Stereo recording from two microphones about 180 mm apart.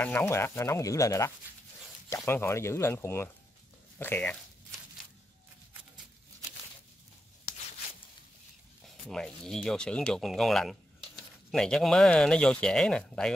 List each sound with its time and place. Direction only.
0.0 s speech: 10° left (ahead or behind)
8.8 s speech: 5° left (ahead or behind)